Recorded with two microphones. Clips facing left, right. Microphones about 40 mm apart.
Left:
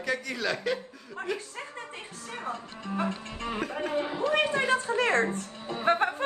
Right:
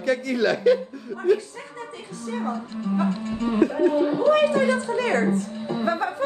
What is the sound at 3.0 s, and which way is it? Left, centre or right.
Speech, left.